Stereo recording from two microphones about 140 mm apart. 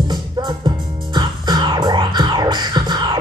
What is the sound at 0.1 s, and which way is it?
Music, 30° right (ahead or behind).